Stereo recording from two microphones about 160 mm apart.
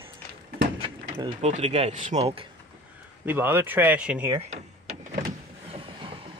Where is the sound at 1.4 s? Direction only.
45° right (ahead or behind).